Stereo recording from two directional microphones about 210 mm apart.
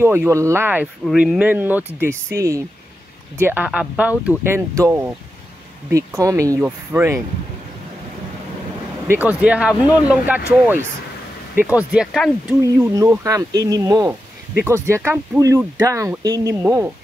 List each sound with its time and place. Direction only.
0.0 s speech: 10° right (ahead or behind)
9.0 s speech: 10° right (ahead or behind)
12.6 s speech: 15° right (ahead or behind)